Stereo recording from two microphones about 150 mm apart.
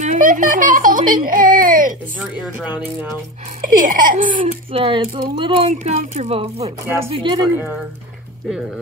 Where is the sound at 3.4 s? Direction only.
60° right (ahead or behind).